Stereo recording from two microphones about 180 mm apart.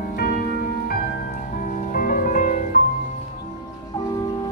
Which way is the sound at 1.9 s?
50° left (ahead or behind).